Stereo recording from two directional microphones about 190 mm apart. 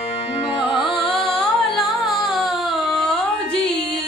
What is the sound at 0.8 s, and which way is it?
Music, centre (ahead or behind).